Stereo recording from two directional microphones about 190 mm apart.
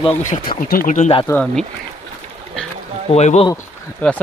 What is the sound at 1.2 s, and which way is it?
Speech, 10° left (ahead or behind).